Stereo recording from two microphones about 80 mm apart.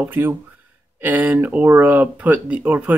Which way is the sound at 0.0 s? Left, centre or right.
Right.